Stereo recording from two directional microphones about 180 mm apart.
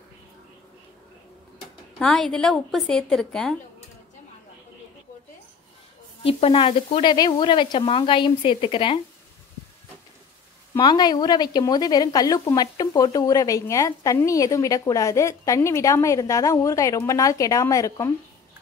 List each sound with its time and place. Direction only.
2.0 s a woman's voice: 5° left (ahead or behind)
6.2 s a woman's voice: 30° left (ahead or behind)
10.8 s a woman's voice: 20° left (ahead or behind)